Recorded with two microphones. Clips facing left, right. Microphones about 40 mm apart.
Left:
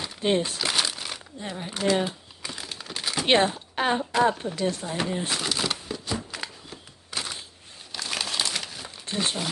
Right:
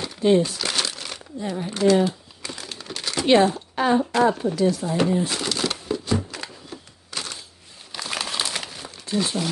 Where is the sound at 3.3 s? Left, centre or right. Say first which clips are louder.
Right 5 dB; left.